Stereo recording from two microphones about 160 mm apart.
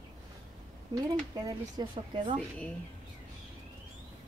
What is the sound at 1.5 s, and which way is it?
Speech, 25° right (ahead or behind).